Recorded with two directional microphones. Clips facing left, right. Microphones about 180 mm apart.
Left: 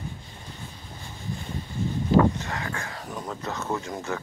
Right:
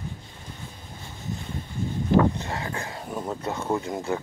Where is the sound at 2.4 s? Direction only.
25° right (ahead or behind).